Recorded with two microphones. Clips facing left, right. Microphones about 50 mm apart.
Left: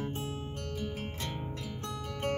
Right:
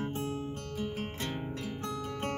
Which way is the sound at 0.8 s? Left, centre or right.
Right.